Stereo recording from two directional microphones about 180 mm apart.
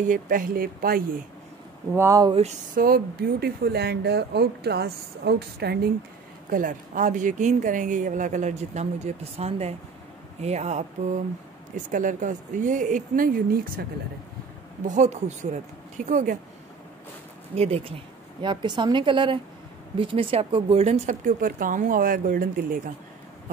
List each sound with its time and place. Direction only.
0.1 s speech: 50° right (ahead or behind)
2.0 s speech: 20° right (ahead or behind)
2.3 s speech: 35° right (ahead or behind)
2.8 s speech: 55° right (ahead or behind)
6.5 s speech: 45° right (ahead or behind)
14.9 s speech: 40° right (ahead or behind)
17.6 s speech: 35° right (ahead or behind); by 22.8 s 50° right (ahead or behind)